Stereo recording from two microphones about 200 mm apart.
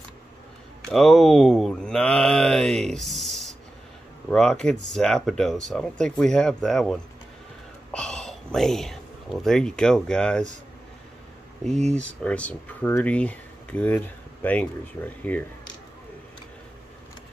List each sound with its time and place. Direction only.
0.8 s speech: centre (ahead or behind)
11.9 s speech: 5° left (ahead or behind)